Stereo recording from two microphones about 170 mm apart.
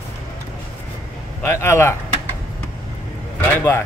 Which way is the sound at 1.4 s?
15° left (ahead or behind).